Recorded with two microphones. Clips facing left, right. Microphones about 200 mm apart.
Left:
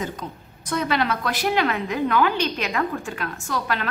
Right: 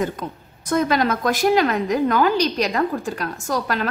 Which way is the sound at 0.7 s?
45° right (ahead or behind).